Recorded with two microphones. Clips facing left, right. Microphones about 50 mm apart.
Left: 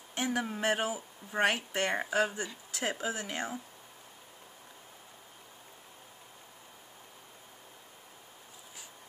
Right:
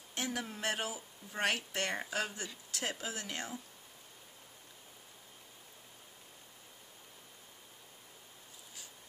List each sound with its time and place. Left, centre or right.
0.1 s speech: centre